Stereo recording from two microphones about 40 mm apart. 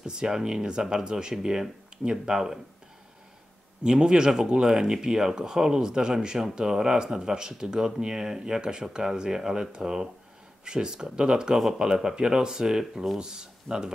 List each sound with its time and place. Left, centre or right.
0.0 s speech: centre
3.8 s speech: centre